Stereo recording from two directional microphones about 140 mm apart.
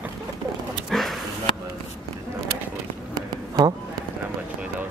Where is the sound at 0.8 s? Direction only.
Centre (ahead or behind).